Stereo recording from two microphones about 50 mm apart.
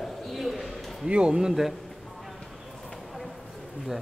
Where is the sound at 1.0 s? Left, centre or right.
Centre.